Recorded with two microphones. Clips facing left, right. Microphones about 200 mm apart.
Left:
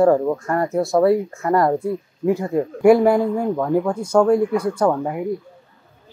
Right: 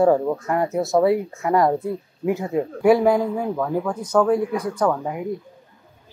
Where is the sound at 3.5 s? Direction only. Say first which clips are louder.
Left 4 dB; 10° left (ahead or behind).